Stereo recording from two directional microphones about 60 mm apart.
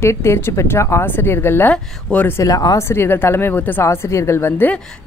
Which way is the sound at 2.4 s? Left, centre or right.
Left.